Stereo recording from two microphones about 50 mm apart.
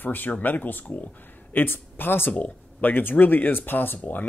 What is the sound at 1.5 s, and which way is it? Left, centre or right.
Speech, left.